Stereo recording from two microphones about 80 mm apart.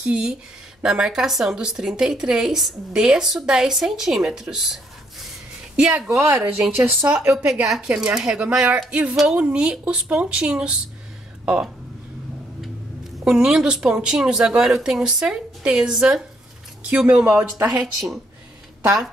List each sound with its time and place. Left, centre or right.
0.0 s a woman's voice: centre
5.8 s a woman's voice: centre
6.1 s speech: right
7.1 s a woman's voice: centre
7.6 s a woman's voice: centre
13.2 s a woman's voice: centre